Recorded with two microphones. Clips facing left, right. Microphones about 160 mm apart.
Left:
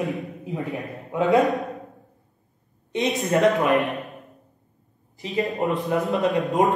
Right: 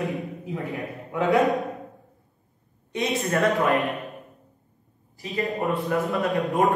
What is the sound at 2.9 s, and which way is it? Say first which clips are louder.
A man's voice: left 3 dB; 20° left (ahead or behind).